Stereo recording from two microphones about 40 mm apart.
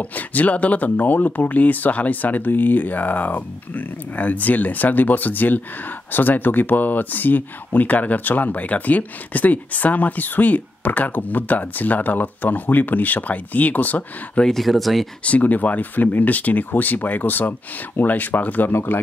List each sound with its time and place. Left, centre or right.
0.0 s speech: left
14.5 s speech: centre
15.2 s speech: left
18.7 s speech: left